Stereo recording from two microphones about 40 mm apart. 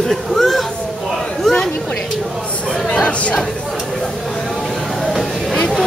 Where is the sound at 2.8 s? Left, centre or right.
Left.